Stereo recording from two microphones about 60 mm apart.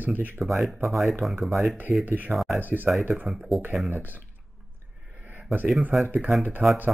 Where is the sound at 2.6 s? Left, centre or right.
Right.